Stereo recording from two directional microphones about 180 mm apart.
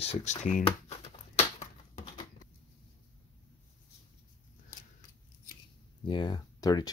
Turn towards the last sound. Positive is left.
turn(degrees=20)  # may be behind; listen again after turning